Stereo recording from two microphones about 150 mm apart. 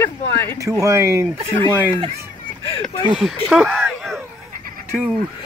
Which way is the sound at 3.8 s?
Centre (ahead or behind).